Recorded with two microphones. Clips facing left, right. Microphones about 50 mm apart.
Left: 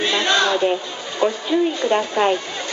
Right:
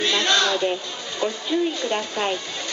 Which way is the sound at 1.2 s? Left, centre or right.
Centre.